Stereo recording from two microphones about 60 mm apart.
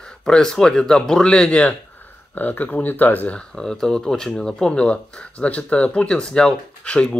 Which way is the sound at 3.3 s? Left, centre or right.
Centre.